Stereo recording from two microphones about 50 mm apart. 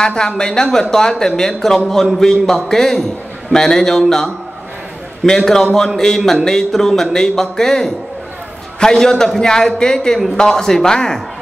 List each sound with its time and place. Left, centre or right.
0.0 s speech: centre
5.2 s speech: centre